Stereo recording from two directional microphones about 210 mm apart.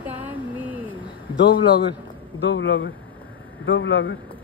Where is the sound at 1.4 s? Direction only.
20° left (ahead or behind).